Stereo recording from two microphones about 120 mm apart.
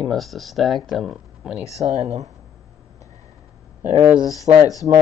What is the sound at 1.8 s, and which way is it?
Speech, 65° right (ahead or behind).